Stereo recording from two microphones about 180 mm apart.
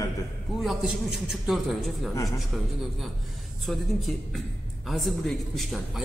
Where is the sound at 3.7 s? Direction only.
Centre (ahead or behind).